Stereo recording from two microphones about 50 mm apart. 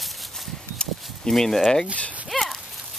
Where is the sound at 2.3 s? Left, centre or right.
Centre.